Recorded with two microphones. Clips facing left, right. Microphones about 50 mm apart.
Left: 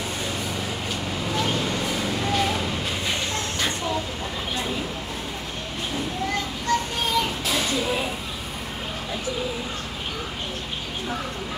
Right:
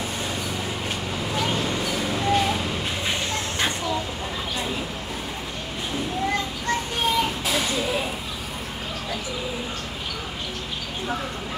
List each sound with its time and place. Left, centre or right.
1.5 s vehicle: centre
6.7 s child singing: right
7.2 s children playing: centre